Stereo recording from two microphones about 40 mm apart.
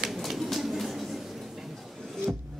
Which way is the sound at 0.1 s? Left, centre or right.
Centre.